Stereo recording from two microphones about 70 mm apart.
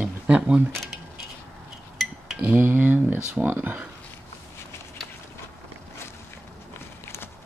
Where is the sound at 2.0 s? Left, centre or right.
Centre.